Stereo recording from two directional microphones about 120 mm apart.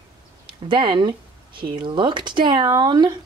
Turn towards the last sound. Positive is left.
turn(degrees=-35)  # may be behind; listen again after turning